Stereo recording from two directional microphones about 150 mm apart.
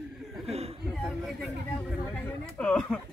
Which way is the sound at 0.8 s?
Centre (ahead or behind).